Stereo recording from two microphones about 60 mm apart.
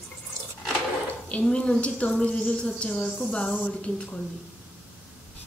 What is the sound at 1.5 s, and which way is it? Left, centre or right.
A woman's voice, centre.